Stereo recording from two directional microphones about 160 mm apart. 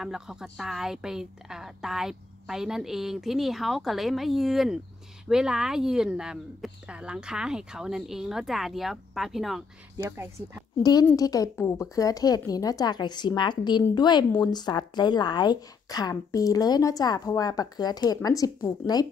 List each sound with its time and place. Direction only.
0.0 s a woman's voice: 5° right (ahead or behind)
10.0 s speech: 15° right (ahead or behind)
10.8 s a woman's voice: 25° left (ahead or behind)